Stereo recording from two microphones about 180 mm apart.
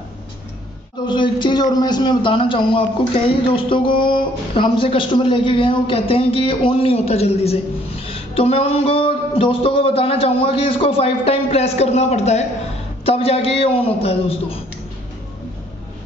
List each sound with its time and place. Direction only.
1.0 s a man's voice: 25° left (ahead or behind)